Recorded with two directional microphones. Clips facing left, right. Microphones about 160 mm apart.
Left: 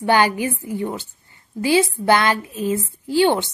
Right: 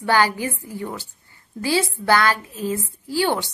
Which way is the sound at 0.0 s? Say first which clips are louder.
Left 2 dB; 20° left (ahead or behind).